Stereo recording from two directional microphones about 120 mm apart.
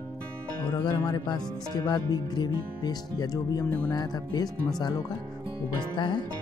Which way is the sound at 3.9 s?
35° left (ahead or behind).